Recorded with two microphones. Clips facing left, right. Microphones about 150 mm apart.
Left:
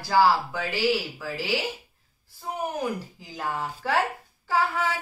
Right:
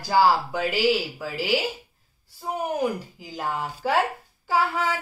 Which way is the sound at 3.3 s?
20° right (ahead or behind).